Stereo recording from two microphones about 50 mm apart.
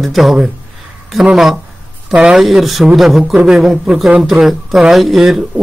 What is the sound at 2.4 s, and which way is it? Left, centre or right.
Speech, centre.